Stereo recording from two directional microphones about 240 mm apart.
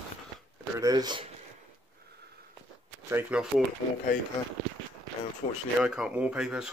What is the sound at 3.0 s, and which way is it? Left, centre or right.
Speech, centre.